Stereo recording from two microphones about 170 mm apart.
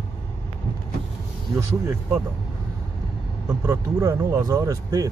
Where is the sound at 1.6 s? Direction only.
15° right (ahead or behind).